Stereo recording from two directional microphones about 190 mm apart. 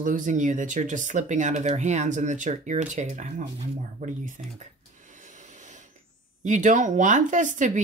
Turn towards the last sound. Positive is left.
turn(degrees=-40)  # may be behind; listen again after turning